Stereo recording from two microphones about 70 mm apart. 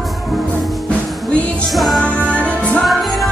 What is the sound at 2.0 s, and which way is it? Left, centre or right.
Music, centre.